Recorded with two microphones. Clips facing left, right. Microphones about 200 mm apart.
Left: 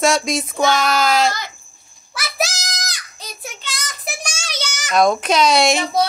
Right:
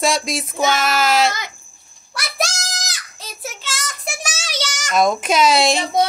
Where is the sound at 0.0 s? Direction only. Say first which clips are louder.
Left 3 dB; centre (ahead or behind).